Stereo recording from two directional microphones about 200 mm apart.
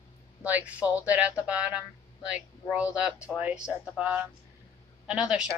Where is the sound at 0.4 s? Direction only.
10° right (ahead or behind).